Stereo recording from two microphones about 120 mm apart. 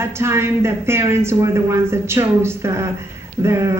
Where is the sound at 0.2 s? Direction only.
20° right (ahead or behind).